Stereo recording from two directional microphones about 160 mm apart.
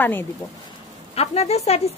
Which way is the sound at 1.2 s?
40° left (ahead or behind).